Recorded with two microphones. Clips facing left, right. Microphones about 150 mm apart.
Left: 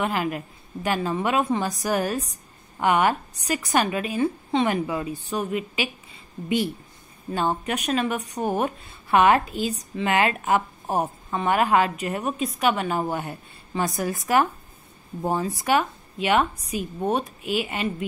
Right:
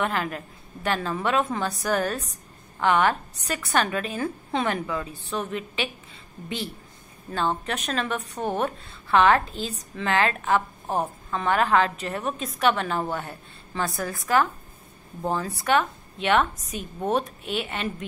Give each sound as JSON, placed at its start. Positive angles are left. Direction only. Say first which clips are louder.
{"t": 0.0, "sound": "a woman's voice", "louder": "left 2 dB", "side_deg": 10}
{"t": 4.8, "sound": "a woman's voice", "louder": "left 3 dB", "side_deg": 15}
{"t": 7.2, "sound": "a woman's voice", "louder": "left 2 dB", "side_deg": 15}
{"t": 12.4, "sound": "a woman's voice", "louder": "right 1 dB", "side_deg": 5}